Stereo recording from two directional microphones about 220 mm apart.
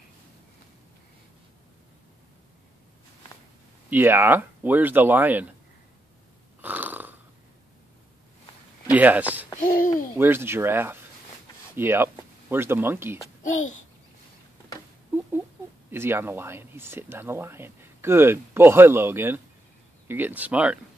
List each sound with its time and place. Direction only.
3.9 s speech: 10° right (ahead or behind)
6.6 s snoring: 10° right (ahead or behind)
8.9 s speech: 5° right (ahead or behind)
9.7 s speech: 40° left (ahead or behind)
10.1 s speech: 10° right (ahead or behind)
13.4 s a child's voice: 35° left (ahead or behind)
15.9 s speech: 10° right (ahead or behind)